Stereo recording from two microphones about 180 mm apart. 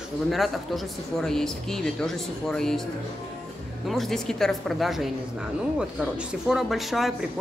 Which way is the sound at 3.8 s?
Centre (ahead or behind).